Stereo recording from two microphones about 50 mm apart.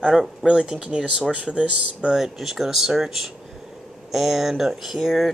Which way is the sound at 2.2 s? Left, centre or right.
Centre.